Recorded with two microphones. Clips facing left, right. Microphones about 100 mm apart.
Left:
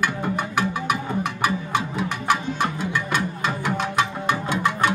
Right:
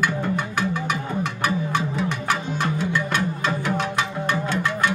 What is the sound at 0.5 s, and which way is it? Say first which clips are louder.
Music: left 1 dB; 10° left (ahead or behind).